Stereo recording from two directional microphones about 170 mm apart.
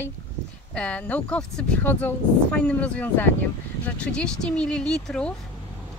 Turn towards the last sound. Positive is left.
turn(degrees=5)  # may be behind; listen again after turning